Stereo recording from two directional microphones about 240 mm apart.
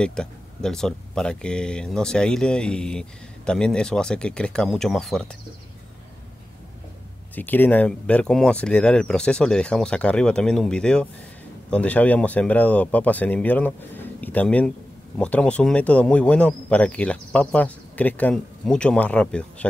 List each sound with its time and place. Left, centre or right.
0.0 s speech: centre
7.3 s speech: centre